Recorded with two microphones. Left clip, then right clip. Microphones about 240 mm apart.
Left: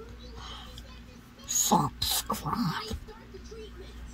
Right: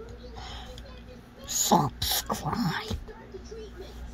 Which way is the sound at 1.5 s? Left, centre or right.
Centre.